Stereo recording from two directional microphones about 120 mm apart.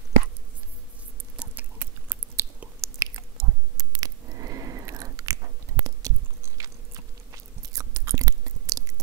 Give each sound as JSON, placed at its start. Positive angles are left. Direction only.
{"t": 1.3, "sound": "chewing", "side_deg": -10}
{"t": 2.8, "sound": "chewing", "side_deg": -25}